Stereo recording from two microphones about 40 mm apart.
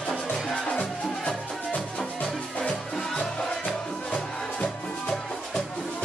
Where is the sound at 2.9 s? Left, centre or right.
Centre.